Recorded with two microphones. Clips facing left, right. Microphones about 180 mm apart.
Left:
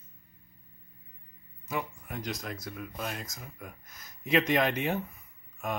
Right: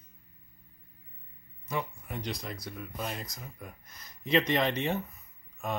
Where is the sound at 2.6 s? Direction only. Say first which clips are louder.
Right 1 dB; centre (ahead or behind).